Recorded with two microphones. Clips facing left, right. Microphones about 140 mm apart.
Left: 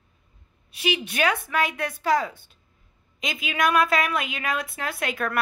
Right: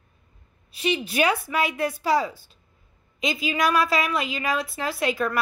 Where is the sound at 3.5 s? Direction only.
Centre (ahead or behind).